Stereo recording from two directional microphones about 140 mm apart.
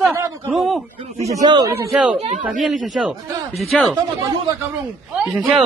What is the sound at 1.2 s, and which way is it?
Speech, 25° right (ahead or behind).